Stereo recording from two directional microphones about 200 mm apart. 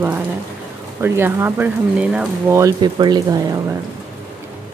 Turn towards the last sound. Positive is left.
turn(degrees=-20)  # may be behind; listen again after turning